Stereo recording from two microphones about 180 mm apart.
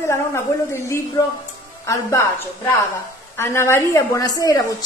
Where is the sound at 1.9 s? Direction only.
15° left (ahead or behind).